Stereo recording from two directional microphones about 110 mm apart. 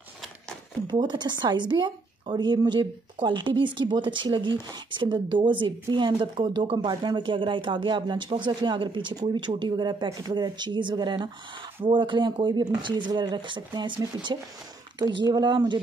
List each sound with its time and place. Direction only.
0.8 s a woman's voice: 40° right (ahead or behind)